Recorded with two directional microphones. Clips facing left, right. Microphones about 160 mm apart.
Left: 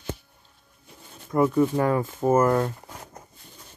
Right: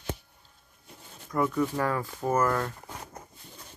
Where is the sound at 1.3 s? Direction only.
25° left (ahead or behind).